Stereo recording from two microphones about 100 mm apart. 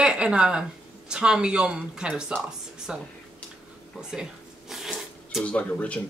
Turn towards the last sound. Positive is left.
turn(degrees=15)  # may be behind; listen again after turning